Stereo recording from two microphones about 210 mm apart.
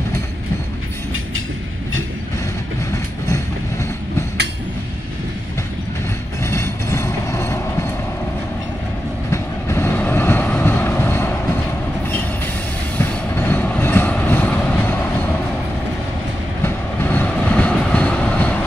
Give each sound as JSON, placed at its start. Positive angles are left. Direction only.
{"t": 6.4, "sound": "train", "side_deg": 15}
{"t": 9.3, "sound": "vehicle", "side_deg": 10}
{"t": 12.9, "sound": "train", "side_deg": 10}
{"t": 16.6, "sound": "train", "side_deg": 10}